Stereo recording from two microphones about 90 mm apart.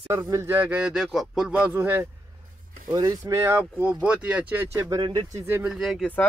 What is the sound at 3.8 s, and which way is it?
Speech, 15° right (ahead or behind).